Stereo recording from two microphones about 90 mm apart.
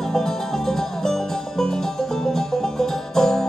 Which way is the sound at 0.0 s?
5° left (ahead or behind).